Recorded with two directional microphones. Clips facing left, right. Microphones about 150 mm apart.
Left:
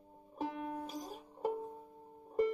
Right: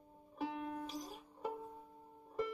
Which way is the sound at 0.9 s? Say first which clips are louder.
Left 2 dB; 45° left (ahead or behind).